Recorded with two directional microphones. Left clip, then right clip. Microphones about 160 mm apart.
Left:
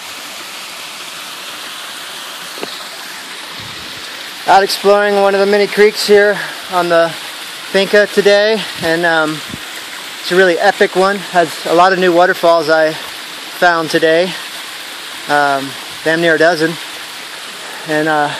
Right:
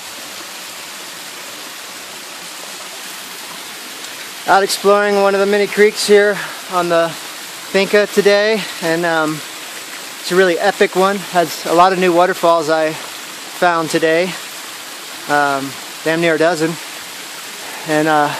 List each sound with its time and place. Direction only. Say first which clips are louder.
4.8 s speech: left 2 dB; 5° right (ahead or behind)
17.8 s speech: even; 20° right (ahead or behind)